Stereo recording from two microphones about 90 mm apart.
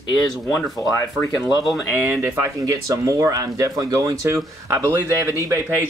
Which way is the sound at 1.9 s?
25° right (ahead or behind).